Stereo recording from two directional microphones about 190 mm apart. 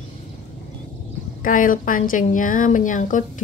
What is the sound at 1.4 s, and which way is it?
A woman's voice, 45° left (ahead or behind).